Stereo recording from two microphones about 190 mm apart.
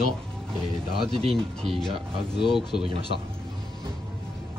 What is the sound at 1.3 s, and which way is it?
Speech, centre (ahead or behind).